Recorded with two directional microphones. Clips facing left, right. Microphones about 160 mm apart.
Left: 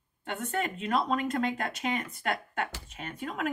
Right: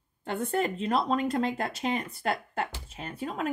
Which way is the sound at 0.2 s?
30° right (ahead or behind).